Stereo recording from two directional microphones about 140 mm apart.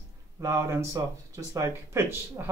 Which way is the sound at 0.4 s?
20° right (ahead or behind).